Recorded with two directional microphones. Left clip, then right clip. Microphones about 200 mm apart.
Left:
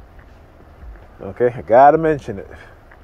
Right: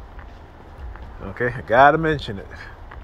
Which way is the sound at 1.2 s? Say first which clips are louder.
Left 6 dB; 35° left (ahead or behind).